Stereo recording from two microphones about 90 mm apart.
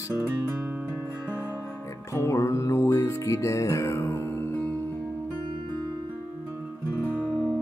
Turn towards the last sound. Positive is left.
turn(degrees=-20)  # may be behind; listen again after turning